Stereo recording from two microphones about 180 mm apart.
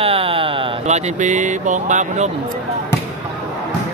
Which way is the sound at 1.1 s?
45° right (ahead or behind).